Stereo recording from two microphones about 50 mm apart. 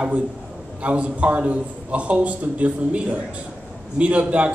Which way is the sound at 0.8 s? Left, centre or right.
Right.